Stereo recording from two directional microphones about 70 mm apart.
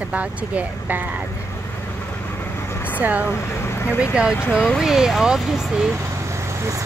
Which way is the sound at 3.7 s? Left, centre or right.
Left.